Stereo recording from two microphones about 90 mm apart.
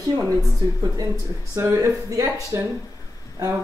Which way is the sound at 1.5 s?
35° right (ahead or behind).